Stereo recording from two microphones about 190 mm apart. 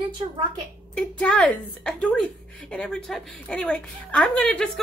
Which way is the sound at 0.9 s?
5° left (ahead or behind).